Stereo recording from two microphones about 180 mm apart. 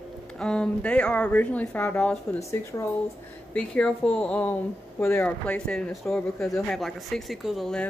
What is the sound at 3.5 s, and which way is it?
Speech, 5° left (ahead or behind).